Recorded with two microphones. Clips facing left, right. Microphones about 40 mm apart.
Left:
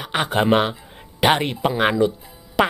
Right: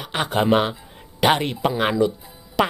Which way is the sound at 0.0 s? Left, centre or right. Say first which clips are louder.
Left 1 dB; centre.